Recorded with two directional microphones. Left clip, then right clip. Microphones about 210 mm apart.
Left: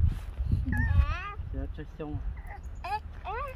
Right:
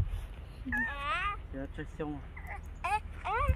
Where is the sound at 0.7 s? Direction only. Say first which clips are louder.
Right 5 dB; 20° right (ahead or behind).